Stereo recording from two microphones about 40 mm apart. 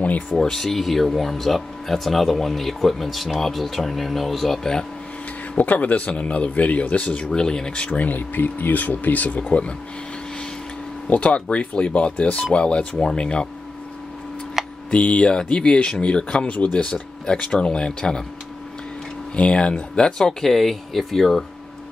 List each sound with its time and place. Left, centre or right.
0.4 s speech: centre
5.6 s speech: left
7.2 s speech: centre
8.1 s speech: left
11.1 s speech: left
14.9 s speech: left
19.3 s speech: left
20.2 s speech: centre